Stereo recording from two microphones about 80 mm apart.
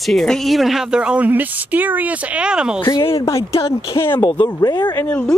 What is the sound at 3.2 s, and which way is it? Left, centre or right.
Speech, left.